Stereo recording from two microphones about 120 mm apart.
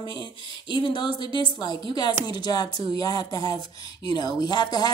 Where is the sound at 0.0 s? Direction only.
40° left (ahead or behind).